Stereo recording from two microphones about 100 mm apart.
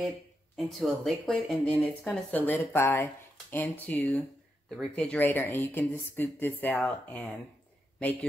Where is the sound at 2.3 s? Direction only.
20° left (ahead or behind).